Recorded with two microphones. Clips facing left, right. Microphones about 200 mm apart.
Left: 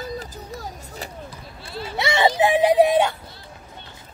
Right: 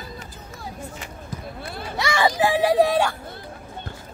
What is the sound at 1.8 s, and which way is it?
Vehicle, 25° left (ahead or behind).